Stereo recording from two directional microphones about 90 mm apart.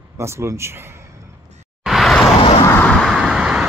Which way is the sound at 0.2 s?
30° right (ahead or behind).